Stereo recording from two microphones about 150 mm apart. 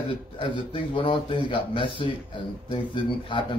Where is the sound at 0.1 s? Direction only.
35° left (ahead or behind).